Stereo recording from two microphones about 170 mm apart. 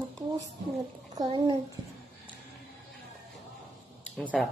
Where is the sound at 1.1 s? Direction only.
25° right (ahead or behind).